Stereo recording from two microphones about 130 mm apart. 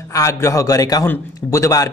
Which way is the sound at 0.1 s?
25° left (ahead or behind).